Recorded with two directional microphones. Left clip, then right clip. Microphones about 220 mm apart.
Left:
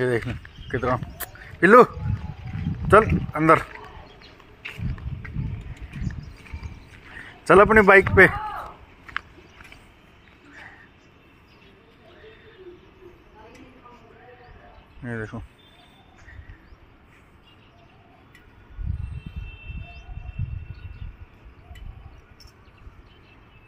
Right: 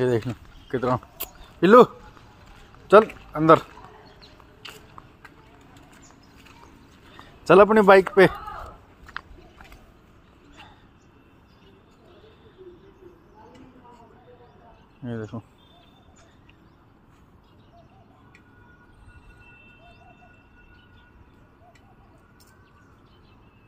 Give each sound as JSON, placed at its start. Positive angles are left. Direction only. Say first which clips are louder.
{"t": 0.0, "sound": "a man's voice", "louder": "right 1 dB", "side_deg": -15}
{"t": 2.9, "sound": "speech", "louder": "right 1 dB", "side_deg": -5}
{"t": 7.4, "sound": "a man's voice", "louder": "even", "side_deg": -10}
{"t": 15.0, "sound": "speech", "louder": "left 2 dB", "side_deg": -5}